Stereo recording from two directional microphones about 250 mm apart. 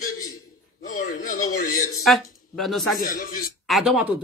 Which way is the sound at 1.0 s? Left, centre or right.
Left.